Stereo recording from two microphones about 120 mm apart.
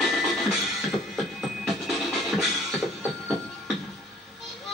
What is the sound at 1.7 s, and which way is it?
Music, centre (ahead or behind).